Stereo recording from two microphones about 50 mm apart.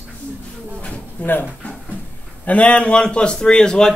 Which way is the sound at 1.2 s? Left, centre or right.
Left.